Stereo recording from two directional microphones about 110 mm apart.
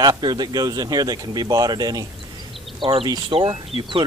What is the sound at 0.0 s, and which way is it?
Speech, 40° right (ahead or behind).